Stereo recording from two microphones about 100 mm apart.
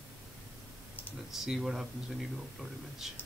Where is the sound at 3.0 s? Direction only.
5° right (ahead or behind).